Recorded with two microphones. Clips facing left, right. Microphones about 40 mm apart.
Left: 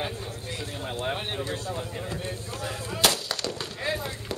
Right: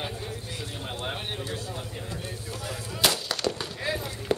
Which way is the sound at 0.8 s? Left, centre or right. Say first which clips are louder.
Left 4 dB; centre.